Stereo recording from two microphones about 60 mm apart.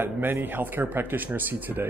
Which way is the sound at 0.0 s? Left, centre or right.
Right.